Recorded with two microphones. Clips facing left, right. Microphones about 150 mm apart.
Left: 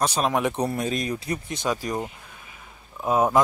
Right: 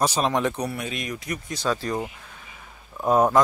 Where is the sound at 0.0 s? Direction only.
Centre (ahead or behind).